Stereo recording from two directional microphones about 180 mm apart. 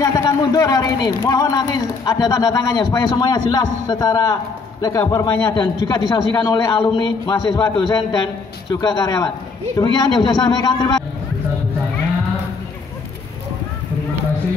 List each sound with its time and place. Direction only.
0.0 s speech: 20° left (ahead or behind)